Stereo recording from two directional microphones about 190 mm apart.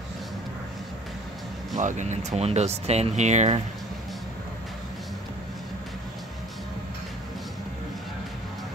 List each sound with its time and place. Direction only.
1.8 s speech: 40° right (ahead or behind)